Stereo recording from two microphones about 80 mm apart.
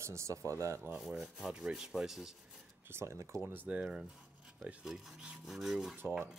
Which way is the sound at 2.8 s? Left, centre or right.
Right.